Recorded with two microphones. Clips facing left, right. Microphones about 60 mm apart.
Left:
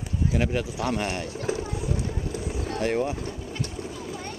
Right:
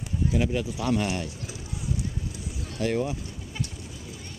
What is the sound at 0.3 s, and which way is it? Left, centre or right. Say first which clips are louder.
Speech: even; left.